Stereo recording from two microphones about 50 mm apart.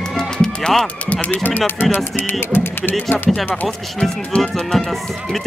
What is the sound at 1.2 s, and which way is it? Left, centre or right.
Speech, left.